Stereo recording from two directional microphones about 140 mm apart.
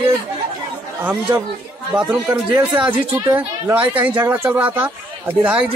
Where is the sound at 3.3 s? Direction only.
20° right (ahead or behind).